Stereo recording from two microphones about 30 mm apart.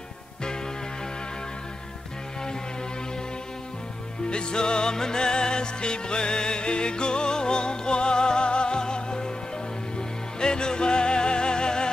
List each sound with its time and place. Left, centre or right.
4.3 s music: left